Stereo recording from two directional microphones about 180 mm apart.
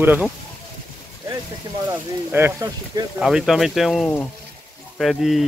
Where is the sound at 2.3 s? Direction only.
15° right (ahead or behind).